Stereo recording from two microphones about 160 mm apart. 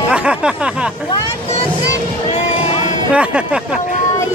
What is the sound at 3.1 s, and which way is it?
Speech, 5° right (ahead or behind).